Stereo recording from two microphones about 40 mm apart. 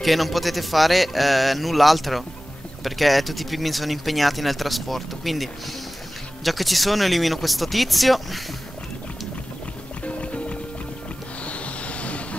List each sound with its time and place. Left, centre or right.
0.0 s speech: centre
10.0 s music: left
11.4 s vehicle: left